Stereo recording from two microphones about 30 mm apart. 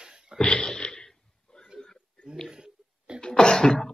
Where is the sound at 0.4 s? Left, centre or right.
Left.